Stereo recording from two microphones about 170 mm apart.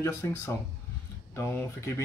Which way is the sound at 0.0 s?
15° left (ahead or behind).